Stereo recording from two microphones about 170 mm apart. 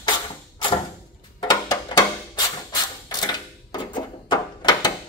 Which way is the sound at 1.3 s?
20° left (ahead or behind).